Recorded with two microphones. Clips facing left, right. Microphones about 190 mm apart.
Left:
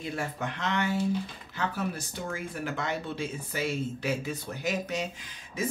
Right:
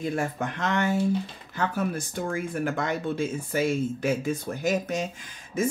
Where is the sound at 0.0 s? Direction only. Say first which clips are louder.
Right 5 dB; 45° right (ahead or behind).